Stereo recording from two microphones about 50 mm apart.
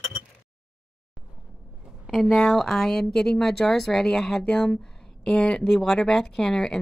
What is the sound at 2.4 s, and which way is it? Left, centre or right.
Speech, centre.